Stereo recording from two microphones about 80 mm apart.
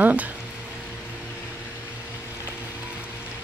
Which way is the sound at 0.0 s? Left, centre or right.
Centre.